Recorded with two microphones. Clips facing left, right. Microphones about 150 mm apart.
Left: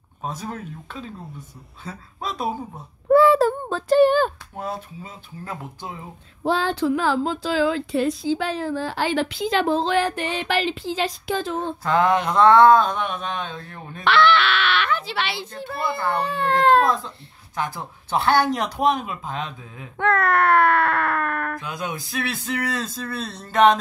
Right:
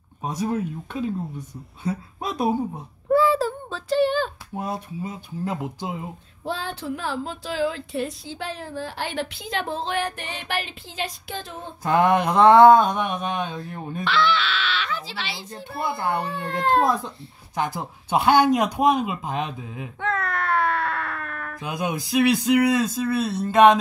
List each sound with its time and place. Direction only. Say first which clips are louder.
0.2 s speech: right 6 dB; 15° right (ahead or behind)
3.1 s a sound: left 5 dB; 65° left (ahead or behind)
4.6 s speech: right 3 dB; 15° right (ahead or behind)
6.4 s speech: left 8 dB; 90° left
11.8 s speech: right 1 dB; 15° right (ahead or behind)
14.0 s speech: left 5 dB; 65° left (ahead or behind)
15.5 s speech: right 1 dB; 20° right (ahead or behind)
16.3 s speech: left 6 dB; 90° left
17.6 s speech: right 2 dB; 20° right (ahead or behind)
20.0 s a sound: left 7 dB; 60° left (ahead or behind)
21.6 s speech: right 3 dB; 20° right (ahead or behind)